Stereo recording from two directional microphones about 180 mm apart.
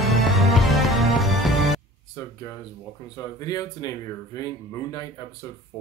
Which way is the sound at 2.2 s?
20° left (ahead or behind).